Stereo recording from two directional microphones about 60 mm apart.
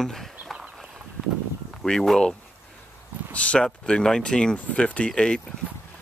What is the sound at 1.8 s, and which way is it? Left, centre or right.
Speech, centre.